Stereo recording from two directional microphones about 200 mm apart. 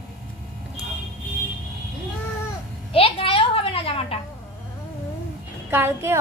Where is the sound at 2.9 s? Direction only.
25° left (ahead or behind).